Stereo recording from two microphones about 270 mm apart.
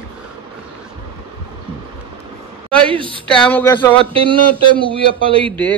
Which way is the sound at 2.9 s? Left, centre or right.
Centre.